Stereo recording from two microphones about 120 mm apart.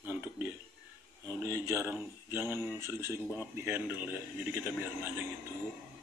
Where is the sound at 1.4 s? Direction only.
25° right (ahead or behind).